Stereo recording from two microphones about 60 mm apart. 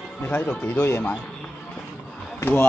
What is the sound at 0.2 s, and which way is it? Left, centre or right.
Speech, left.